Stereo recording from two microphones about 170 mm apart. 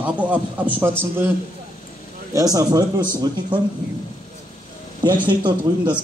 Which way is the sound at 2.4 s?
20° right (ahead or behind).